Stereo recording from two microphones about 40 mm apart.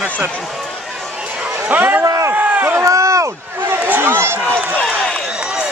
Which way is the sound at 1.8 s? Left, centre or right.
Right.